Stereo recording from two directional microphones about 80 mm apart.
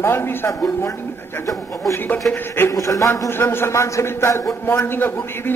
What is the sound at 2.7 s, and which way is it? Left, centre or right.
Speech, left.